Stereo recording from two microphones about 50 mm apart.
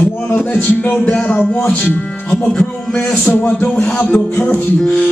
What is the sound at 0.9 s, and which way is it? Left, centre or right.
Music, centre.